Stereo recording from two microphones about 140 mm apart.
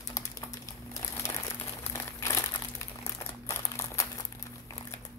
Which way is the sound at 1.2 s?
15° left (ahead or behind).